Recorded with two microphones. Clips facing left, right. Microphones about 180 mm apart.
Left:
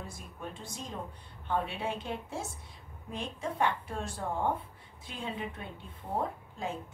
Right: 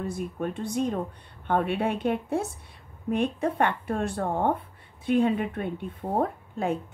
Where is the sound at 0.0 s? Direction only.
60° right (ahead or behind).